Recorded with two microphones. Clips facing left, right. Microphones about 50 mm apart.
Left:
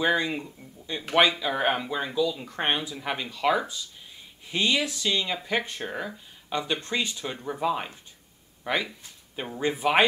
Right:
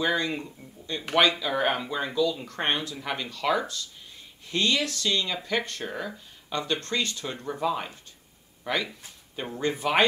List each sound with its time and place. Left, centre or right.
0.0 s speech: centre
0.3 s speech: centre
0.9 s speech: centre